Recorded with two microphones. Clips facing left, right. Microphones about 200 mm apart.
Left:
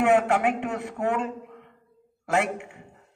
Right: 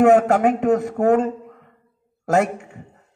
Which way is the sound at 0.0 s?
40° right (ahead or behind).